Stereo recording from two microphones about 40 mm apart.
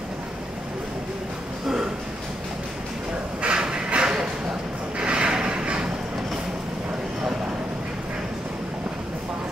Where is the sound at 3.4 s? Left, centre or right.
Right.